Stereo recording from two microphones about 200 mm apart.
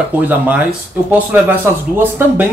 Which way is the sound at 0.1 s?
10° right (ahead or behind).